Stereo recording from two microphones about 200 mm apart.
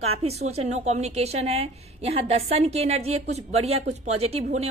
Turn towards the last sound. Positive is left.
turn(degrees=-30)  # may be behind; listen again after turning